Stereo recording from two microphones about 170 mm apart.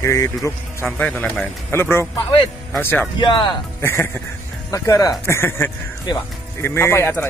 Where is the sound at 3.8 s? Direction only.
15° left (ahead or behind).